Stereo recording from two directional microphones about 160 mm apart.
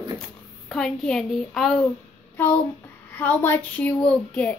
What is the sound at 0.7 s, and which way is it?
A woman's voice, 5° left (ahead or behind).